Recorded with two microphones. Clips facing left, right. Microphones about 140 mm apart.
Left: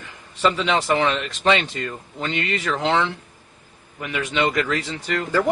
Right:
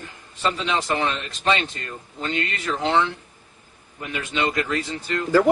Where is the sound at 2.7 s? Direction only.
90° left.